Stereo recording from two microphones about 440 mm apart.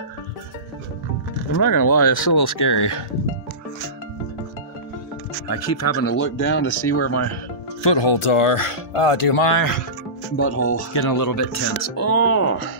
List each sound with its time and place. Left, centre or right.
1.5 s speech: left
5.5 s speech: left
7.8 s speech: left
9.6 s speech: left
10.3 s speech: left
10.9 s speech: left